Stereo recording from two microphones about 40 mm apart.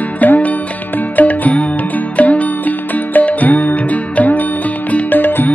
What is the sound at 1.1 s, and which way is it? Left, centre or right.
Music, left.